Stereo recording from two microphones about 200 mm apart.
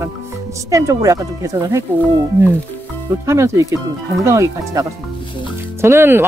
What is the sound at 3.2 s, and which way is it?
Speech, 15° right (ahead or behind).